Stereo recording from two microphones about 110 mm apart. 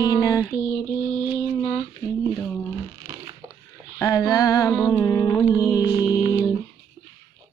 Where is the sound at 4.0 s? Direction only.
30° left (ahead or behind).